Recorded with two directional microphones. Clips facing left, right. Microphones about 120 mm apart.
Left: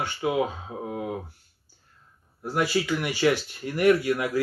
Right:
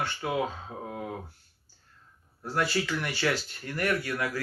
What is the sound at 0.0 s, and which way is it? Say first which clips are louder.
Speech: left 4 dB; 15° left (ahead or behind).